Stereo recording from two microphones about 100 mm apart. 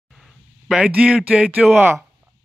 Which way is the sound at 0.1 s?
Centre (ahead or behind).